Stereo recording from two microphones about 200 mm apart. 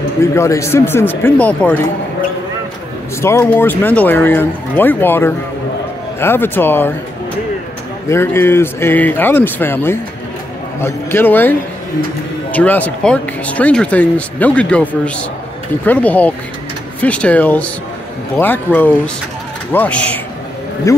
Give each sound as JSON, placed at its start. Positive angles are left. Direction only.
{"t": 0.2, "sound": "speech", "side_deg": 15}
{"t": 3.2, "sound": "speech", "side_deg": 15}
{"t": 8.1, "sound": "speech", "side_deg": 10}
{"t": 12.5, "sound": "speech", "side_deg": 10}